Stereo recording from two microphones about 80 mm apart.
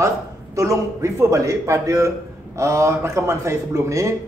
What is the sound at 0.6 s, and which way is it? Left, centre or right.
A man's voice, right.